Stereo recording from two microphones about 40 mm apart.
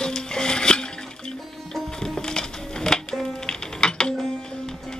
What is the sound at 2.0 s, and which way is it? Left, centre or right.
Music, centre.